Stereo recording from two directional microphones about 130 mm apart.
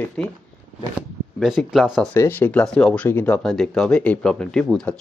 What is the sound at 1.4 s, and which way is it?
Speech, centre (ahead or behind).